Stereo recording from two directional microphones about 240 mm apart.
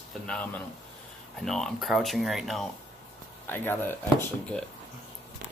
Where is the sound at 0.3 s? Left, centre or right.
Centre.